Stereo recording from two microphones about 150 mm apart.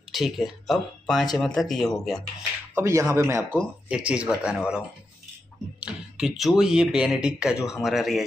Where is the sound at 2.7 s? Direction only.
20° right (ahead or behind).